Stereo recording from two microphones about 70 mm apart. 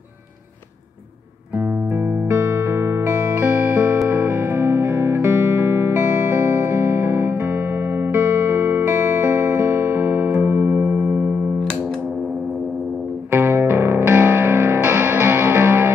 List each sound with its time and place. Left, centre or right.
2.0 s music: right
13.3 s music: right